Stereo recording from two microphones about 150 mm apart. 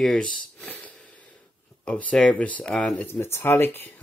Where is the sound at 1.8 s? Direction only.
10° left (ahead or behind).